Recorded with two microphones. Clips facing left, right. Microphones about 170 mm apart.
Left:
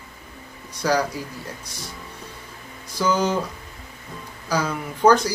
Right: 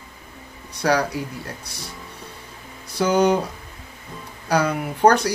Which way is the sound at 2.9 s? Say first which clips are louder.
Right 4 dB; 65° right (ahead or behind).